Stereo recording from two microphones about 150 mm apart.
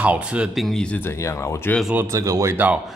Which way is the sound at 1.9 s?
15° right (ahead or behind).